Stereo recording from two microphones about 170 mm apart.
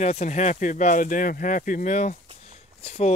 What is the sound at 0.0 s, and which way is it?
Speech, 40° left (ahead or behind).